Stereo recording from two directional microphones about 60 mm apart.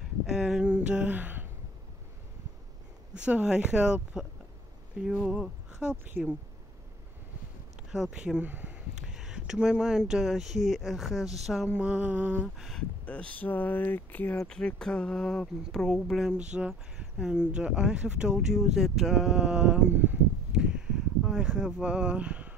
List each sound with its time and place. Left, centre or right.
0.3 s speech: centre; by 1.5 s right
3.2 s speech: centre
5.8 s a sound: right
7.9 s speech: centre
8.5 s speech: right
8.9 s speech: centre
11.7 s a sound: right
12.5 s speech: centre
13.0 s speech: left
14.5 s speech: centre
16.2 s speech: centre
18.5 s speech: centre
20.5 s a sound: centre